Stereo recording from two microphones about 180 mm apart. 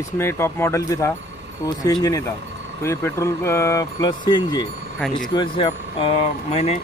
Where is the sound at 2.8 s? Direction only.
15° left (ahead or behind).